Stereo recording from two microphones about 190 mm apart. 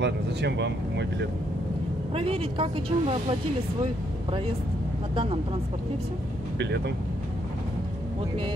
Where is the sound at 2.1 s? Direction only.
30° right (ahead or behind).